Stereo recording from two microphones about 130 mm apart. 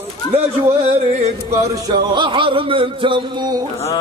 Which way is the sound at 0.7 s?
55° right (ahead or behind).